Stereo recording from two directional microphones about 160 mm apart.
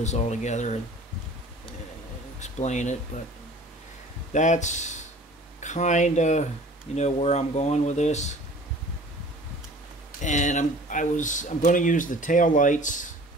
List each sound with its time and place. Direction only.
0.0 s speech: 45° left (ahead or behind)
2.4 s speech: 45° left (ahead or behind)
4.3 s speech: 50° left (ahead or behind)
10.2 s speech: 50° left (ahead or behind)